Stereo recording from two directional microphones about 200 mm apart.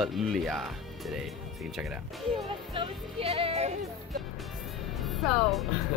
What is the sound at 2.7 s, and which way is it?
Speech, 25° right (ahead or behind).